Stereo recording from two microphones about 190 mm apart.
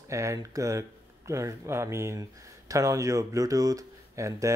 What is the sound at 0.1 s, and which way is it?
Speech, 15° right (ahead or behind).